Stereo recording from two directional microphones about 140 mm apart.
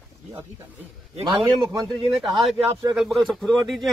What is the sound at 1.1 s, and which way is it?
Speech, 35° right (ahead or behind).